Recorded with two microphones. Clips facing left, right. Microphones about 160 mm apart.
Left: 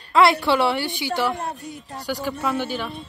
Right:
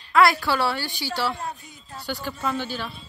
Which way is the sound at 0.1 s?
25° left (ahead or behind).